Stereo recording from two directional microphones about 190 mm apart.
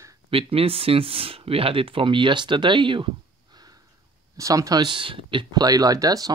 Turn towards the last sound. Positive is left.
turn(degrees=-20)  # may be behind; listen again after turning